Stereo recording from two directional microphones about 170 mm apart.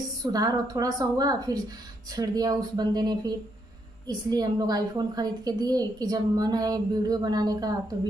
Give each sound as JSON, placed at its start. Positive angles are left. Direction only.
{"t": 0.2, "sound": "a woman's voice", "side_deg": -20}